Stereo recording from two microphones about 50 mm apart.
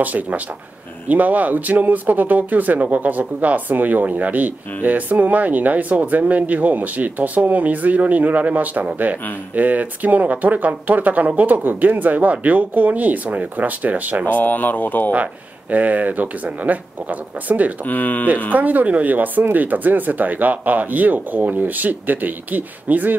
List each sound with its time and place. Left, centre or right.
0.0 s speech: right
14.2 s speech: left
15.7 s speech: right
17.8 s speech: left
18.5 s speech: right